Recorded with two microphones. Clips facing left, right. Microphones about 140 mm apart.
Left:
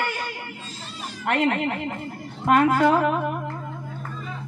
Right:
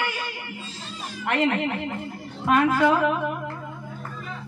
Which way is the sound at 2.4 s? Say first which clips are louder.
Left 2 dB; 45° left (ahead or behind).